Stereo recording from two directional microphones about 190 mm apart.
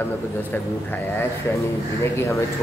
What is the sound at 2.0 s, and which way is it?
Speech, 15° left (ahead or behind).